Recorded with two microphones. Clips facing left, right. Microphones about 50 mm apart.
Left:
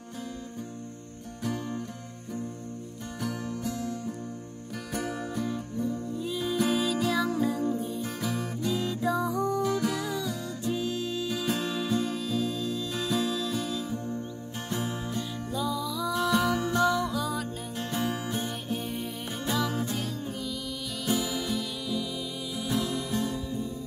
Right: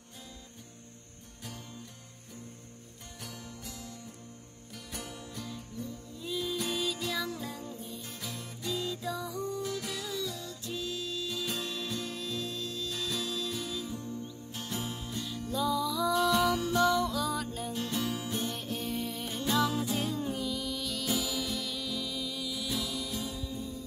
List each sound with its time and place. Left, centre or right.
1.4 s music: left
6.1 s music: centre
6.4 s music: left
6.7 s music: centre
8.6 s music: left; by 12.8 s centre
12.8 s music: left
13.2 s music: centre
14.7 s music: left
15.5 s music: centre
16.2 s music: left; by 17.7 s centre
17.7 s music: left
18.5 s music: centre
19.9 s music: centre
22.5 s music: left